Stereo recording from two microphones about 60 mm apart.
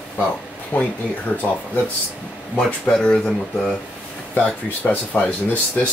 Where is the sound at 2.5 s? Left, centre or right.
Centre.